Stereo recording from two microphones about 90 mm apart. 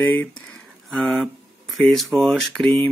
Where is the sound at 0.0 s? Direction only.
20° left (ahead or behind).